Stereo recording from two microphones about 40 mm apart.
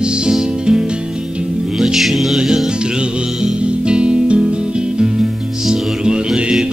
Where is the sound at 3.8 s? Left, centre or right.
Right.